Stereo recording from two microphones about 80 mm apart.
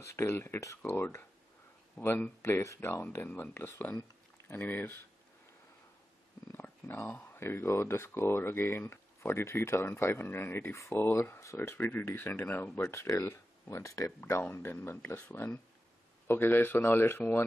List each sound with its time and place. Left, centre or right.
0.0 s speech: left
2.4 s speech: left
6.5 s a sound: left
7.2 s speech: left
12.9 s speech: left
14.5 s speech: left